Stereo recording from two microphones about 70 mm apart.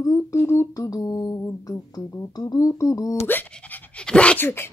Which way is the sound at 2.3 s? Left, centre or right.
Left.